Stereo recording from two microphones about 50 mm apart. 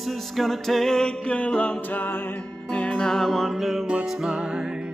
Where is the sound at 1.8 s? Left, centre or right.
Left.